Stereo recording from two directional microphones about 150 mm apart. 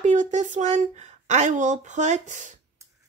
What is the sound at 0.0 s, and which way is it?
Speech, 55° right (ahead or behind).